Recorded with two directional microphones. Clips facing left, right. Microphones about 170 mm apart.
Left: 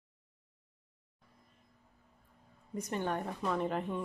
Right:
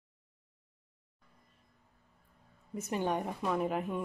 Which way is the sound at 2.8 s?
10° right (ahead or behind).